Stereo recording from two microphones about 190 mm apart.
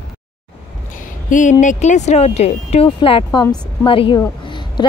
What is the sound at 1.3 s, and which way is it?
Speech, 40° left (ahead or behind).